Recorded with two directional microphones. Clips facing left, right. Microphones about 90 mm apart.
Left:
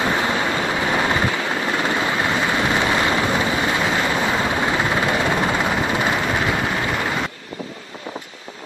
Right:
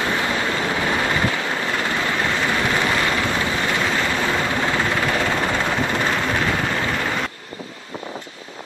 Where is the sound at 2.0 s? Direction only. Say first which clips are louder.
Left 1 dB; 20° left (ahead or behind).